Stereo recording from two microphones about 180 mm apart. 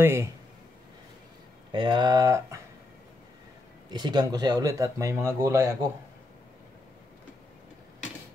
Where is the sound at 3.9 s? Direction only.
25° right (ahead or behind).